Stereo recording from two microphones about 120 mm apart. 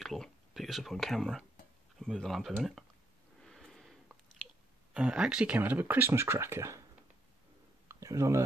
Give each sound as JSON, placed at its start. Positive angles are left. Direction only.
{"t": 0.0, "sound": "speech", "side_deg": 0}
{"t": 3.4, "sound": "a sound", "side_deg": 0}
{"t": 4.9, "sound": "speech", "side_deg": -10}
{"t": 7.9, "sound": "speech", "side_deg": -25}